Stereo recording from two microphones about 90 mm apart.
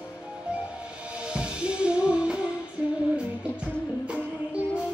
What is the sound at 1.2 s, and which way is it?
Music, 10° right (ahead or behind).